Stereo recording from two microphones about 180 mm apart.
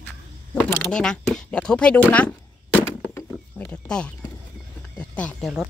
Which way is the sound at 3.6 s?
5° left (ahead or behind).